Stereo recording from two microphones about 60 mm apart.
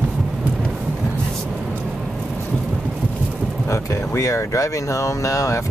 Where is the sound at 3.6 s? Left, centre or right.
Left.